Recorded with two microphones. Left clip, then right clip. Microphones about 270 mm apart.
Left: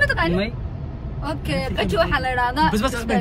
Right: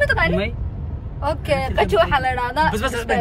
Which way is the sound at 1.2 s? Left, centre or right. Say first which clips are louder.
Right 5 dB; centre.